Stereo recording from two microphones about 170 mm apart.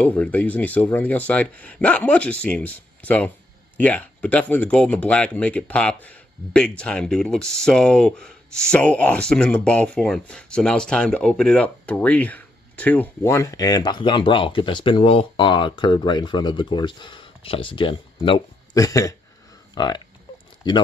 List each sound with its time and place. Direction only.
0.0 s speech: 10° left (ahead or behind); by 18.8 s 30° left (ahead or behind)
18.8 s speech: 20° left (ahead or behind)